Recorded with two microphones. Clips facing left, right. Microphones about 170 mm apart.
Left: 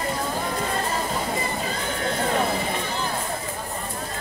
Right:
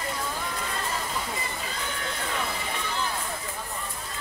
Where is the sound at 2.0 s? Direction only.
45° left (ahead or behind).